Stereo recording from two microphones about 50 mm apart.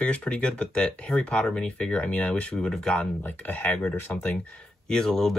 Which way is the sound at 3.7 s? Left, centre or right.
Left.